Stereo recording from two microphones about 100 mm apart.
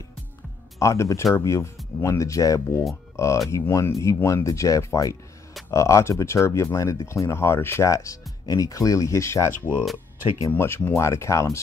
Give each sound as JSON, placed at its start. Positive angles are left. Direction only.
{"t": 0.7, "sound": "speech", "side_deg": 30}